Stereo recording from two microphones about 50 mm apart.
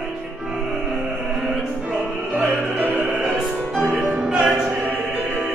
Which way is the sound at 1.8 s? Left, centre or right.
Right.